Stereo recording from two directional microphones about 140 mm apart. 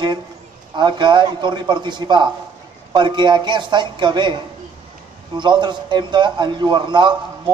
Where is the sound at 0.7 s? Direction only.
35° right (ahead or behind).